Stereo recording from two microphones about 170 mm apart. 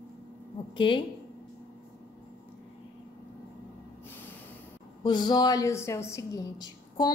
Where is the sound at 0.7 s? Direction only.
30° left (ahead or behind).